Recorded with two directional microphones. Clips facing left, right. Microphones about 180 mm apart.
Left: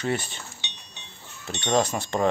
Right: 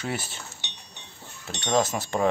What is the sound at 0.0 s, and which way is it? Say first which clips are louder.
Speech: left 4 dB; 5° right (ahead or behind).